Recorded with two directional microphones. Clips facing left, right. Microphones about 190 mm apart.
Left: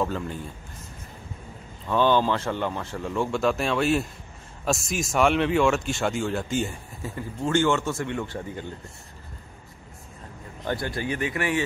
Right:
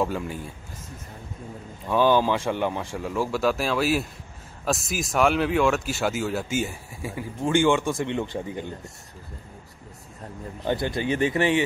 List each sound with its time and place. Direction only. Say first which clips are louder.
0.0 s speech: right 1 dB; 10° right (ahead or behind)
1.9 s speech: right 1 dB; 10° right (ahead or behind)
10.7 s speech: right 3 dB; 20° right (ahead or behind)